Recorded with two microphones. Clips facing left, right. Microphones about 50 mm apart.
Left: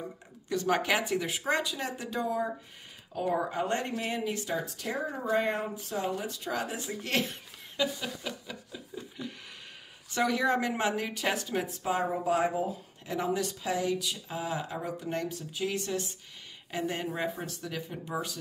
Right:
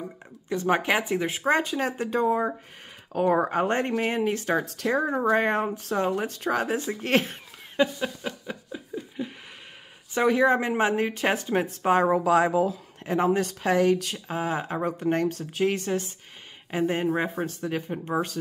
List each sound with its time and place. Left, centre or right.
0.5 s speech: right
3.1 s speech: right
9.2 s a sound: centre
10.1 s speech: right
11.8 s a woman's voice: right
12.3 s speech: right
13.0 s speech: right
13.6 s speech: right
14.2 s speech: right